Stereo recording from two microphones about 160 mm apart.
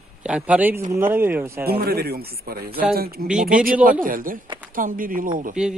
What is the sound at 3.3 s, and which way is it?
Speech, 5° right (ahead or behind).